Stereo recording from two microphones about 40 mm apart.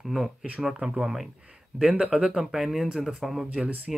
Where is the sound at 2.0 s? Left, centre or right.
Right.